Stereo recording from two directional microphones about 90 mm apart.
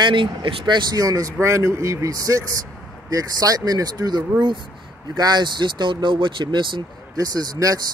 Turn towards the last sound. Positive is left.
turn(degrees=-45)  # may be behind; listen again after turning